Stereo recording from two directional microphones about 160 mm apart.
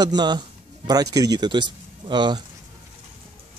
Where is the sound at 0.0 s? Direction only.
25° right (ahead or behind).